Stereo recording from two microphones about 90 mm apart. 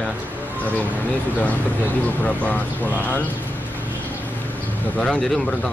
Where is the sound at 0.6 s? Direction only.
15° left (ahead or behind).